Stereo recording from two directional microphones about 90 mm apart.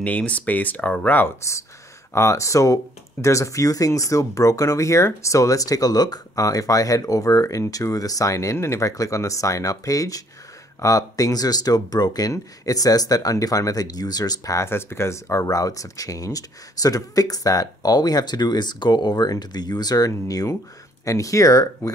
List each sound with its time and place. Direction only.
0.0 s speech: 15° left (ahead or behind); by 14.7 s 40° left (ahead or behind)
14.7 s speech: 25° left (ahead or behind); by 20.1 s 50° left (ahead or behind)
20.1 s speech: 40° left (ahead or behind)